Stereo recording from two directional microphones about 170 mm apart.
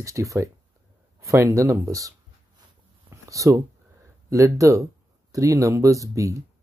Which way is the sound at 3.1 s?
20° right (ahead or behind).